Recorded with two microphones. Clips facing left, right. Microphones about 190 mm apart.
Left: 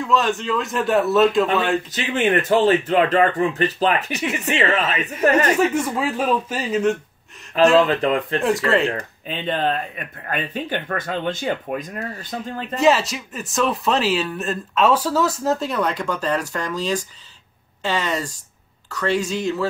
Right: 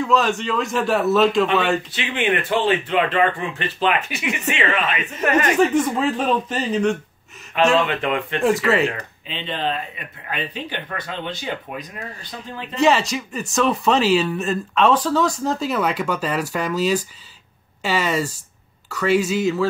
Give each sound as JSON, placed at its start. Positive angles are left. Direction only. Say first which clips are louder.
{"t": 0.0, "sound": "speech", "louder": "right 1 dB", "side_deg": 0}
{"t": 1.9, "sound": "speech", "louder": "left 2 dB", "side_deg": 40}
{"t": 5.9, "sound": "speech", "louder": "right 1 dB", "side_deg": 10}
{"t": 7.8, "sound": "speech", "louder": "left 3 dB", "side_deg": 35}
{"t": 8.5, "sound": "speech", "louder": "right 2 dB", "side_deg": 0}
{"t": 8.9, "sound": "speech", "louder": "left 4 dB", "side_deg": 50}
{"t": 12.7, "sound": "speech", "louder": "even", "side_deg": 0}